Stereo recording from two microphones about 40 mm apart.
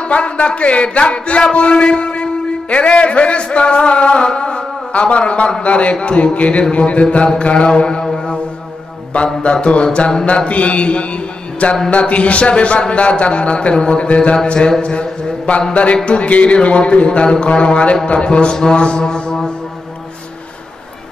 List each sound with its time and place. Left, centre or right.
0.0 s speech: left
3.4 s a sound: left
5.6 s a man's voice: left
9.1 s a man's voice: left